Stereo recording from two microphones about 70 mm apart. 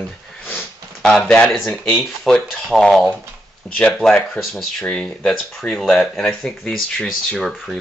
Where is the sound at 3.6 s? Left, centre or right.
Centre.